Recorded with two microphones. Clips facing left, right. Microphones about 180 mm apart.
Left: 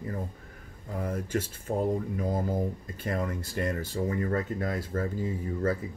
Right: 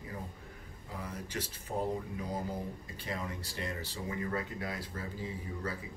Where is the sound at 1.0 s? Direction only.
50° left (ahead or behind).